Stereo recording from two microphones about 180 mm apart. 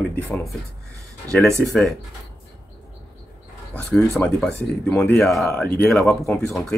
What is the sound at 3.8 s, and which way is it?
Speech, 5° left (ahead or behind).